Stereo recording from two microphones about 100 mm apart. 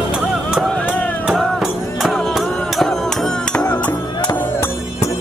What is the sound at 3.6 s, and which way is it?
Music, 20° left (ahead or behind).